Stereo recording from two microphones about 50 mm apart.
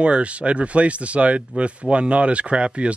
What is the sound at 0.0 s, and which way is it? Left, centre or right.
Speech, right.